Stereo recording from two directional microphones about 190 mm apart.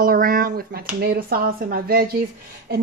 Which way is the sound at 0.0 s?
50° right (ahead or behind).